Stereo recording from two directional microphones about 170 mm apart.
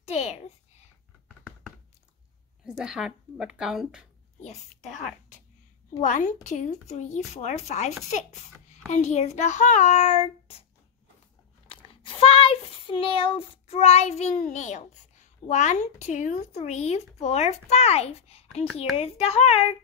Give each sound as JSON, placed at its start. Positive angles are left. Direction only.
{"t": 0.0, "sound": "a sound", "side_deg": 40}
{"t": 2.6, "sound": "a woman's voice", "side_deg": -5}
{"t": 4.4, "sound": "a woman's voice", "side_deg": 45}
{"t": 6.0, "sound": "a child's voice", "side_deg": 50}
{"t": 11.6, "sound": "a child's voice", "side_deg": 30}